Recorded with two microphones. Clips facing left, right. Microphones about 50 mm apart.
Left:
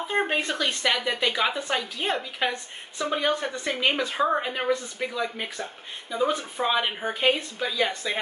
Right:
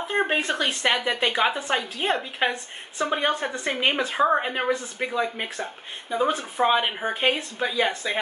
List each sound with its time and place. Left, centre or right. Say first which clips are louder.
0.3 s a woman's voice: right 2 dB; right